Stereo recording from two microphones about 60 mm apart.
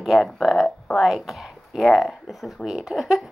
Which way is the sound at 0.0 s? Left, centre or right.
Centre.